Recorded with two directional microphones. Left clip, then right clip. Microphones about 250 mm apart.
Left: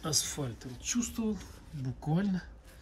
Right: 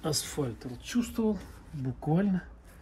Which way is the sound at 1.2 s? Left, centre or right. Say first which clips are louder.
Right 6 dB; centre.